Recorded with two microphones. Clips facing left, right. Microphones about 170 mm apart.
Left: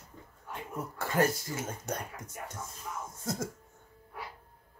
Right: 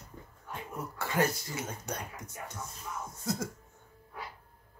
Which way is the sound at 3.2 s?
50° left (ahead or behind).